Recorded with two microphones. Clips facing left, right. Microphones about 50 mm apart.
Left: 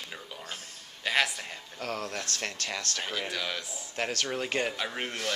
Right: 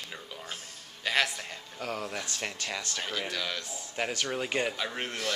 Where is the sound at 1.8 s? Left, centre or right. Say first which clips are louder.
Even; centre.